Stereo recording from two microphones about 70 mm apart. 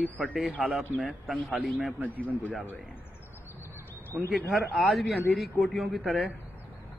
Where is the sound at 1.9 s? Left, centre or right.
Right.